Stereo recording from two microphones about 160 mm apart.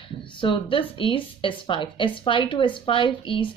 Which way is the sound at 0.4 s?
30° left (ahead or behind).